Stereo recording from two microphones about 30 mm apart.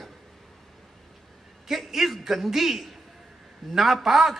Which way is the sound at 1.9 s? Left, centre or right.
Centre.